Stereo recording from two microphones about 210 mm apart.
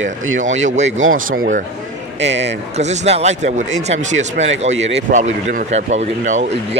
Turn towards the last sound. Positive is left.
turn(degrees=-35)  # may be behind; listen again after turning